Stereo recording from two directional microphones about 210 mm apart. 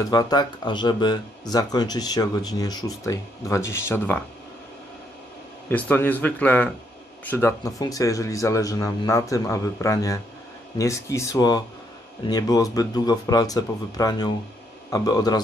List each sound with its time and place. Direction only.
0.1 s speech: 20° left (ahead or behind)
5.7 s speech: 5° left (ahead or behind)